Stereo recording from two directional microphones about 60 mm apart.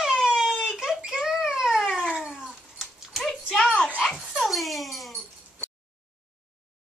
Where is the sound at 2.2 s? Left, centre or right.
Centre.